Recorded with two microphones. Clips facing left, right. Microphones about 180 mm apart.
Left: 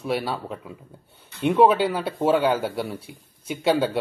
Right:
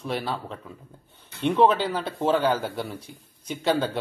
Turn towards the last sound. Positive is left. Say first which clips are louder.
# left 3 dB
turn(degrees=10)  # may be behind; listen again after turning